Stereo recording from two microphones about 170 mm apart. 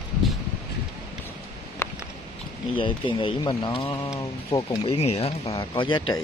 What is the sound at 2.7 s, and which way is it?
Speech, 30° left (ahead or behind).